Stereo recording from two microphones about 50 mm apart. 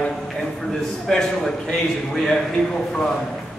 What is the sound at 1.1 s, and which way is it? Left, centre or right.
Speech, centre.